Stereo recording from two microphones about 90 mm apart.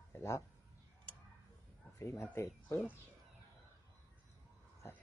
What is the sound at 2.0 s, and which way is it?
Speech, 30° left (ahead or behind).